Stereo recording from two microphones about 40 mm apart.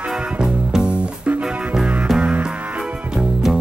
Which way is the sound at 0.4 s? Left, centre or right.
Right.